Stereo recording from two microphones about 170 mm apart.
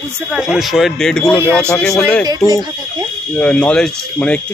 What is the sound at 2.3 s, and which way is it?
Speech, 20° left (ahead or behind).